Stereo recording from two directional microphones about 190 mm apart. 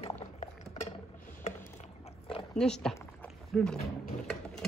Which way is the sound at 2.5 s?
5° left (ahead or behind).